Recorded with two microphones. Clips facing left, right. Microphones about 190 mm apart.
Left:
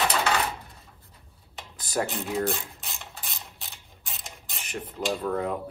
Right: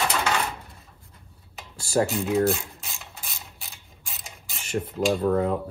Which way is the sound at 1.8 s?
30° right (ahead or behind).